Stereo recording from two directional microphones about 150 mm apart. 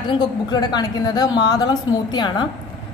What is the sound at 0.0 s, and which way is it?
A woman's voice, 30° left (ahead or behind).